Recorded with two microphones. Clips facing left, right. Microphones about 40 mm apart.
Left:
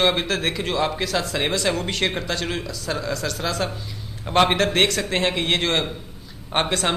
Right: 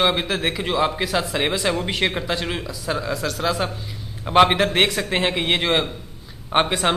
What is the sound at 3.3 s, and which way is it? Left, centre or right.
A woman's voice, centre.